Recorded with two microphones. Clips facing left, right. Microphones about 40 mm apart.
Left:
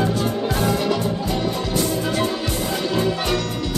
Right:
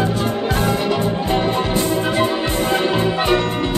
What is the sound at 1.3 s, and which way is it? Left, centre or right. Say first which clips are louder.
Organ: right 4 dB; right.